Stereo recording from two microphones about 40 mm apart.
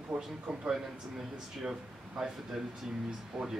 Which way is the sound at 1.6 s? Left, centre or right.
Centre.